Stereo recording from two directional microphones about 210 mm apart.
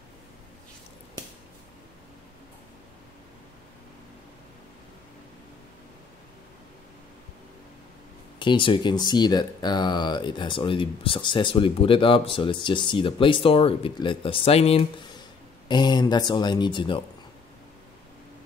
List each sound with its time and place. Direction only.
8.4 s speech: 25° left (ahead or behind)